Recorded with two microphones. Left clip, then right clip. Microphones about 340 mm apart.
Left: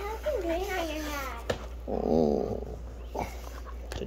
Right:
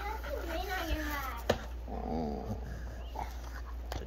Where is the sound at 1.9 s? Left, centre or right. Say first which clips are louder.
Left 12 dB; left.